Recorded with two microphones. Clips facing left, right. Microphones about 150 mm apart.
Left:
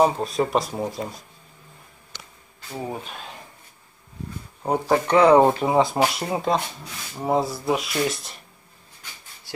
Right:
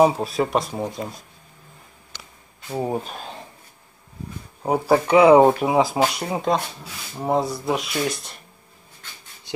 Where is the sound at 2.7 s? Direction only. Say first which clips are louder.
Right 6 dB; 35° right (ahead or behind).